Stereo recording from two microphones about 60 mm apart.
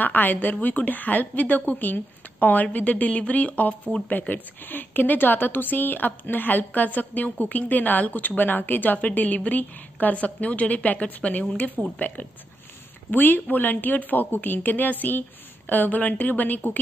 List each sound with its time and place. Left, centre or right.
0.0 s a woman's voice: left